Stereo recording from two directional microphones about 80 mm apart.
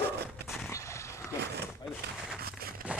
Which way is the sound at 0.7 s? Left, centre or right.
Left.